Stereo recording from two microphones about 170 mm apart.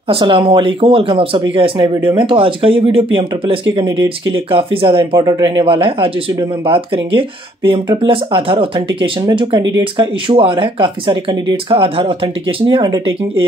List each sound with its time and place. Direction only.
0.1 s speech: 30° right (ahead or behind)